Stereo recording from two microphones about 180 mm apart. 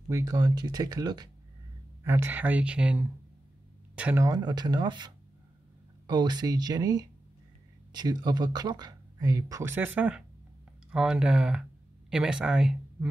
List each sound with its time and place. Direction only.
0.1 s speech: 20° right (ahead or behind)
2.0 s speech: 10° right (ahead or behind)
4.3 s speech: 25° right (ahead or behind); by 13.1 s 5° right (ahead or behind)